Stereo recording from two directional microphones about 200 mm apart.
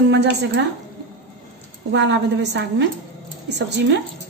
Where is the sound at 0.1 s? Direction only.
60° right (ahead or behind).